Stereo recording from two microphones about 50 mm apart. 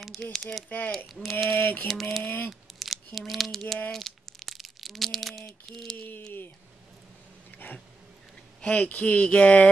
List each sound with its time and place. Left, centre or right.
0.0 s speech: centre
0.7 s speech: left
0.9 s a sound: centre
1.5 s speech: left
1.9 s a sound: centre
2.2 s speech: left
2.8 s speech: centre
3.9 s a sound: centre
8.7 s speech: left